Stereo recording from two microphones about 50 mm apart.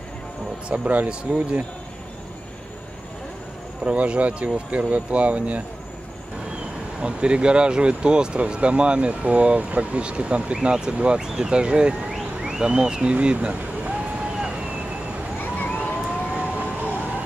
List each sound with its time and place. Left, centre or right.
0.7 s speech: right
3.8 s speech: right
7.0 s speech: right
13.1 s a sound: right
15.8 s emergency vehicle: right